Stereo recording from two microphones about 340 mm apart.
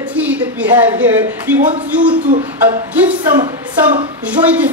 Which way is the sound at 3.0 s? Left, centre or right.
Centre.